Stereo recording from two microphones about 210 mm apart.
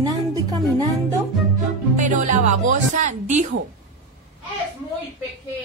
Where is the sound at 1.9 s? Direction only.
35° right (ahead or behind).